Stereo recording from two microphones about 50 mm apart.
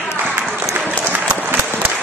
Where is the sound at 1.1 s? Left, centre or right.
Right.